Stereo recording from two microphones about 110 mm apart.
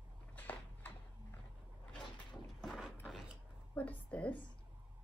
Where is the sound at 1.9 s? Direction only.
5° left (ahead or behind).